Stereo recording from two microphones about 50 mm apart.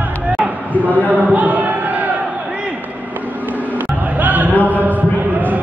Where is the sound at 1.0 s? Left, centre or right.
Right.